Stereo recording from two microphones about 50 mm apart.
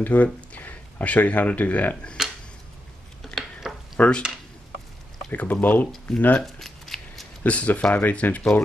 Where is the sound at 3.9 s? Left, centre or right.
Left.